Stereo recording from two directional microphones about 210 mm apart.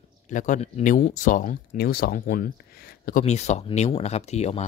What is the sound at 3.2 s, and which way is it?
Speech, 30° left (ahead or behind).